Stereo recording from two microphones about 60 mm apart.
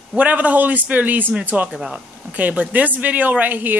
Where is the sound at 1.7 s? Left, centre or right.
Centre.